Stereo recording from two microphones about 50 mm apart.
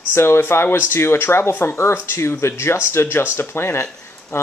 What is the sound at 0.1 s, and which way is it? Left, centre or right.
Speech, left.